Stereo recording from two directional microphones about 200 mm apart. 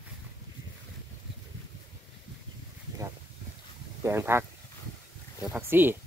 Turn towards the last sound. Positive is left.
turn(degrees=-10)  # may be behind; listen again after turning